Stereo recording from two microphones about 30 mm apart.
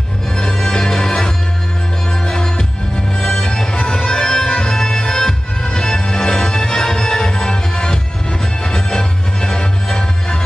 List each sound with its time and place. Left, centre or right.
0.4 s music: left